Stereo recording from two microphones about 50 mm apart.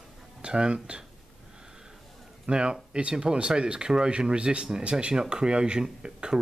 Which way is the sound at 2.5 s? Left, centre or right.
Centre.